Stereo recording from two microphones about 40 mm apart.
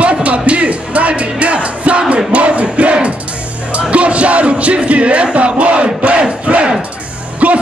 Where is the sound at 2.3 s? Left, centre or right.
Right.